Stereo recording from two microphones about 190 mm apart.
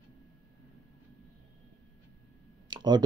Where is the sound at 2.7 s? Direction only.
20° right (ahead or behind).